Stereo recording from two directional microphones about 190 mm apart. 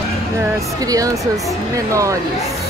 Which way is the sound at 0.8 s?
20° right (ahead or behind).